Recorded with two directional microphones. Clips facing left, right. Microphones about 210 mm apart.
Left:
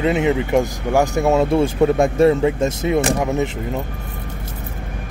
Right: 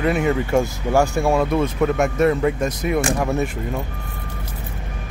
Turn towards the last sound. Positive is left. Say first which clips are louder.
# left 2 dB
turn(degrees=20)  # may be behind; listen again after turning